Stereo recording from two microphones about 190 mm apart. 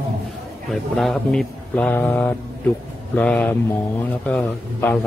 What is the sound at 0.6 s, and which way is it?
A man's voice, centre (ahead or behind).